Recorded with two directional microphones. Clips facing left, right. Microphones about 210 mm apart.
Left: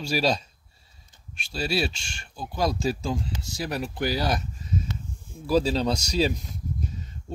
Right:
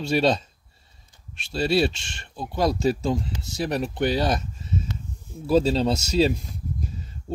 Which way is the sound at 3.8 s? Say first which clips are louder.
Right 3 dB; 25° right (ahead or behind).